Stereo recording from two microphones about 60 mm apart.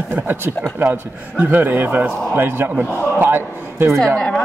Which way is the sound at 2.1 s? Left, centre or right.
Centre.